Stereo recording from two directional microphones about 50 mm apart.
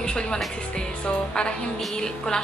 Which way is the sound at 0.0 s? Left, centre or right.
Centre.